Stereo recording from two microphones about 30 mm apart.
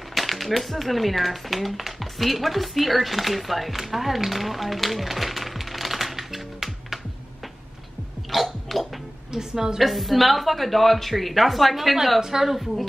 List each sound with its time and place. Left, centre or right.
0.1 s speech: centre
8.3 s a sound: centre
9.3 s a woman's voice: centre
9.8 s speech: centre
12.2 s a woman's voice: centre